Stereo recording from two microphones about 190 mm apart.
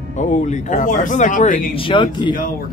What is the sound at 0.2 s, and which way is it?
Speech, 40° left (ahead or behind).